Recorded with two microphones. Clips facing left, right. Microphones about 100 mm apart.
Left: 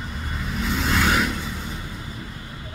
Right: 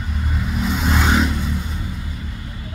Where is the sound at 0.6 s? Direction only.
15° right (ahead or behind).